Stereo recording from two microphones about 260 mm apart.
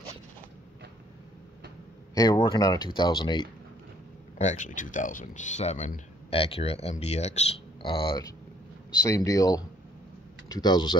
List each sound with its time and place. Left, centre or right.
2.1 s speech: centre
4.4 s speech: left